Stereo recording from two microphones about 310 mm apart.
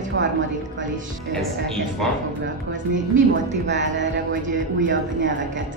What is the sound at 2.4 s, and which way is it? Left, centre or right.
A woman's voice, right.